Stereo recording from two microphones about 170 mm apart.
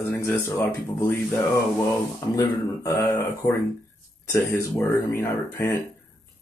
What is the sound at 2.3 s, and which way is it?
Speech, 20° left (ahead or behind).